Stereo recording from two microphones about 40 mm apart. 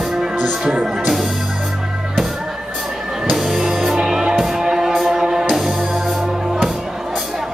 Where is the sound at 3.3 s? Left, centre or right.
Centre.